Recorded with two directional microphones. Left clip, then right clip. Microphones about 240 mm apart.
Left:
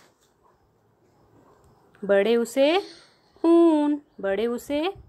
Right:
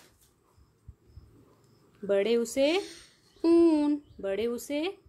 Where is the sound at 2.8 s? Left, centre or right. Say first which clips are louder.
Left 4 dB; right.